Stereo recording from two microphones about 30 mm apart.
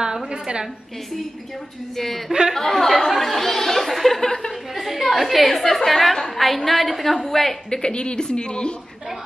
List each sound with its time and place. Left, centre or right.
0.3 s a woman's voice: right
2.0 s a woman's voice: centre
4.2 s speech: left
4.5 s a woman's voice: centre
7.7 s speech: left